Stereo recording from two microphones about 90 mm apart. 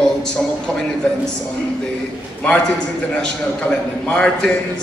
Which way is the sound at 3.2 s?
10° left (ahead or behind).